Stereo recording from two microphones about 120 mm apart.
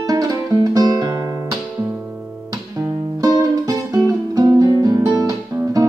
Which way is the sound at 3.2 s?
30° right (ahead or behind).